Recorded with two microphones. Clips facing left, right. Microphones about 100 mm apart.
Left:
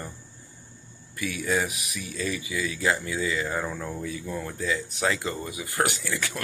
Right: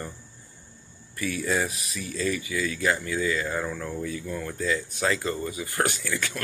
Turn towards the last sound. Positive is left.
turn(degrees=20)  # may be behind; listen again after turning